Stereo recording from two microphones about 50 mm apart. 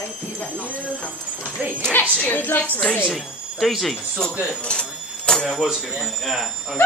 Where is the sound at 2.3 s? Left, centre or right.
Left.